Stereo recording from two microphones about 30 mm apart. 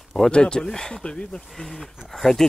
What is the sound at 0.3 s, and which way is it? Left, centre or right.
Speech, left.